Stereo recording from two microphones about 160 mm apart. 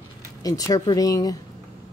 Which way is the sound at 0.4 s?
20° left (ahead or behind).